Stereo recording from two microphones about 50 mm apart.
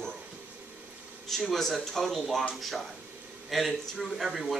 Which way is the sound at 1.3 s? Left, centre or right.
Centre.